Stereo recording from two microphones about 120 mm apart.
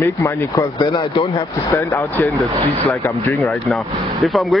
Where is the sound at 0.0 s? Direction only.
20° left (ahead or behind).